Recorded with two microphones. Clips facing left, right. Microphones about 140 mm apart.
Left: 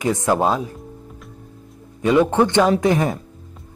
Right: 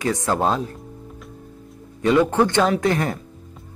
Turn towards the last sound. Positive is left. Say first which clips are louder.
# left 3 dB
turn(degrees=15)  # may be behind; listen again after turning